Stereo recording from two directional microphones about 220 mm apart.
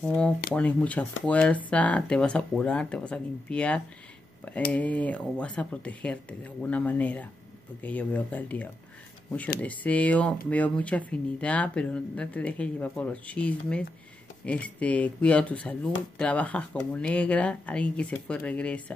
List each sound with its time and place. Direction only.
0.0 s speech: 5° left (ahead or behind)